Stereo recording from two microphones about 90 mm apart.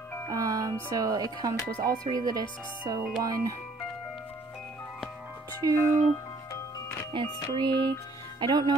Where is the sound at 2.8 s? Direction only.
45° right (ahead or behind).